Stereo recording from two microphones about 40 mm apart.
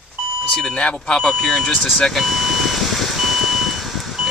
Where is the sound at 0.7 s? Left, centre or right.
Centre.